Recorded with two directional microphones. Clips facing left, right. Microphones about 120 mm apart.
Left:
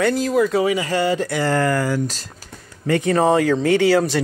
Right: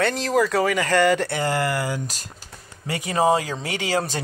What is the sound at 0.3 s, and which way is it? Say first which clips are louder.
Speech: right 1 dB; 40° right (ahead or behind).